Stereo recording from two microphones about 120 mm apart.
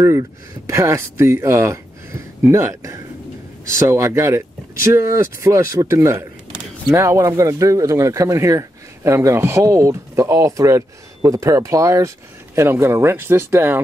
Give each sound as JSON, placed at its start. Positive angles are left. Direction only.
{"t": 0.0, "sound": "speech", "side_deg": -25}